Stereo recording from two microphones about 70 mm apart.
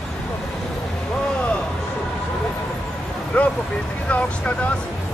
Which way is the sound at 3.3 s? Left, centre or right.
Left.